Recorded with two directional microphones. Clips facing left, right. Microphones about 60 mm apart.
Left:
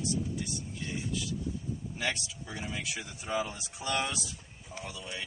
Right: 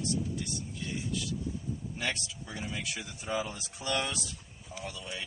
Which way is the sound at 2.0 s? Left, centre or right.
Centre.